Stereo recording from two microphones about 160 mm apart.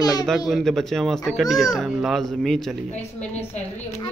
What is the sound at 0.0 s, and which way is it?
Speech, 25° left (ahead or behind).